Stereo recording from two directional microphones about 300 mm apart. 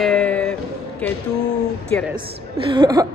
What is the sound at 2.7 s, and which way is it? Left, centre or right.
Speech, centre.